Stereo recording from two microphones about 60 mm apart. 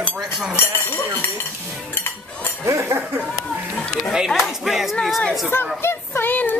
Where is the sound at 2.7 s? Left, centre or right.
Right.